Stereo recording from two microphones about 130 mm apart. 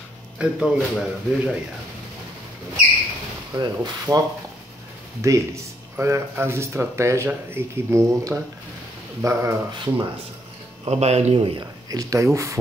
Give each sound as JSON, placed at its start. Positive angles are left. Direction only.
{"t": 0.4, "sound": "a man's voice", "side_deg": -5}
{"t": 3.5, "sound": "speech", "side_deg": -30}
{"t": 5.2, "sound": "speech", "side_deg": -25}
{"t": 10.9, "sound": "speech", "side_deg": -55}
{"t": 11.9, "sound": "speech", "side_deg": -25}